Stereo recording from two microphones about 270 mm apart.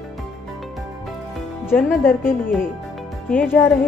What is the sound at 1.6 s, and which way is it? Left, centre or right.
Speech, centre.